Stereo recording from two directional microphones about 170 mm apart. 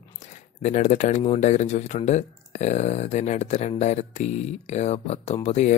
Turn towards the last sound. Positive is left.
turn(degrees=40)  # may be behind; listen again after turning